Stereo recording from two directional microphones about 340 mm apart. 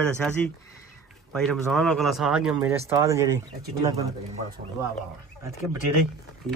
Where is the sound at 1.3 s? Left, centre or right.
Centre.